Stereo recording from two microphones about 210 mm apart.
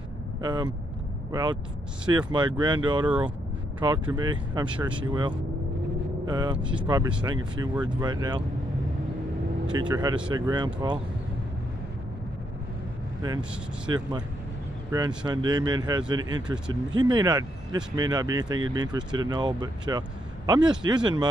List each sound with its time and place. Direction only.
0.4 s speech: 20° right (ahead or behind)
3.1 s speech: 5° right (ahead or behind)
4.1 s speech: 20° right (ahead or behind)
6.6 s speech: 5° right (ahead or behind)
7.2 s speech: 20° right (ahead or behind)
9.7 s speech: 20° right (ahead or behind)
13.8 s speech: 20° right (ahead or behind)